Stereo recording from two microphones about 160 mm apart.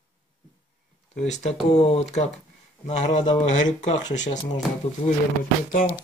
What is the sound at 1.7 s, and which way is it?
Speech, 40° left (ahead or behind).